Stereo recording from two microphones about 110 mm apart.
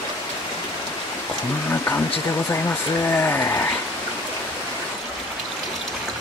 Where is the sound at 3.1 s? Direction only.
20° left (ahead or behind).